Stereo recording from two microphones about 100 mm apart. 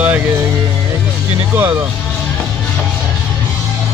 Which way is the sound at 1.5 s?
20° right (ahead or behind).